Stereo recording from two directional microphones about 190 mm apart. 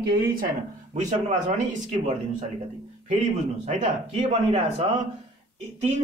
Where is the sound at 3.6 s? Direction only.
30° right (ahead or behind).